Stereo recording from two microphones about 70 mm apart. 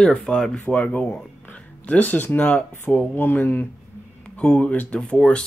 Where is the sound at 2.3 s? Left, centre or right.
Left.